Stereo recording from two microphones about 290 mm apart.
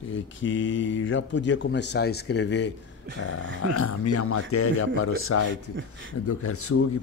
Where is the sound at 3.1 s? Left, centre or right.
Right.